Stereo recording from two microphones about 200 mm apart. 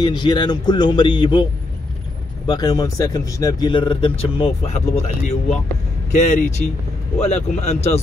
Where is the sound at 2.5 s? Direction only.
20° left (ahead or behind).